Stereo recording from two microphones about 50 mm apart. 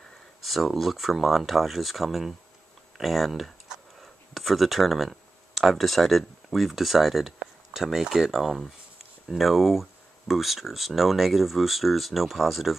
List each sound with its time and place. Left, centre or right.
0.4 s speech: centre